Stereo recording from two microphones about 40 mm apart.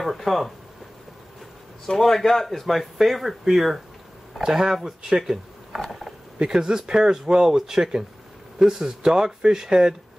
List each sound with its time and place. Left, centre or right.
0.0 s speech: centre
1.9 s speech: centre
5.3 s mechanisms: centre
6.4 s speech: centre